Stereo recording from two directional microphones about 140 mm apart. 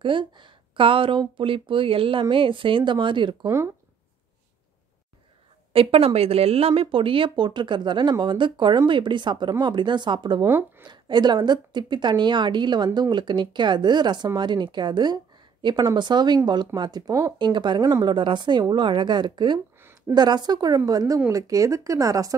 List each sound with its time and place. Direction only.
0.0 s speech: 35° right (ahead or behind)
3.4 s speech: 20° right (ahead or behind)
5.7 s speech: 40° right (ahead or behind)
10.4 s speech: 15° right (ahead or behind)
10.9 s speech: 30° right (ahead or behind)
19.8 s a sound: 15° right (ahead or behind)
20.2 s speech: 30° right (ahead or behind)